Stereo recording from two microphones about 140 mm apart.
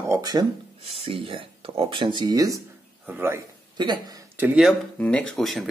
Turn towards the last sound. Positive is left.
turn(degrees=0)  # may be behind; listen again after turning